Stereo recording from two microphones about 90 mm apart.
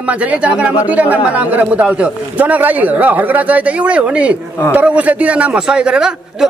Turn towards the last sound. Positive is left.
turn(degrees=-10)  # may be behind; listen again after turning